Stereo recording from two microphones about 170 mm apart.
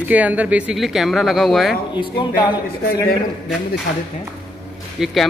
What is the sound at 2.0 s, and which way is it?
Speech, 25° left (ahead or behind).